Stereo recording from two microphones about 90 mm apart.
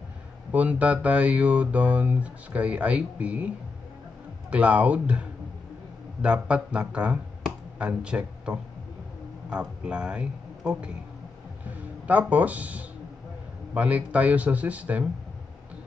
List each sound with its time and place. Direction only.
0.5 s speech: 15° right (ahead or behind)
4.5 s speech: 15° right (ahead or behind)
6.2 s a man's voice: 10° right (ahead or behind)
12.1 s speech: 15° right (ahead or behind)